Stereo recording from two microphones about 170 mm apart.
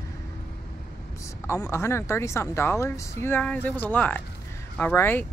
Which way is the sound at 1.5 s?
15° left (ahead or behind).